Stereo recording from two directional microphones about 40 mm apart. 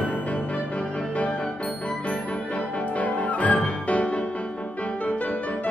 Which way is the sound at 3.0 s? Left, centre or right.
Left.